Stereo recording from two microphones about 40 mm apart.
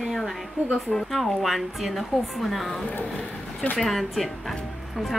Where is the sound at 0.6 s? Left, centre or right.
Right.